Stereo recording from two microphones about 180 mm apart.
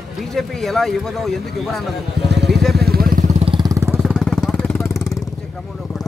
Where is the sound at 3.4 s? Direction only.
30° right (ahead or behind).